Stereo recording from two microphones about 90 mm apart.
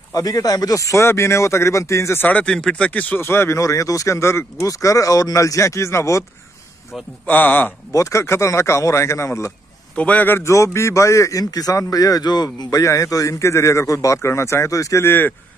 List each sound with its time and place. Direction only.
0.1 s speech: 45° left (ahead or behind)
2.2 s speech: 10° left (ahead or behind); by 6.2 s 35° left (ahead or behind)
7.2 s speech: 20° left (ahead or behind)
7.9 s speech: 35° left (ahead or behind)
9.9 s speech: 15° left (ahead or behind)
10.5 s speech: 35° left (ahead or behind); by 12.6 s 50° left (ahead or behind)
12.7 s speech: 35° left (ahead or behind)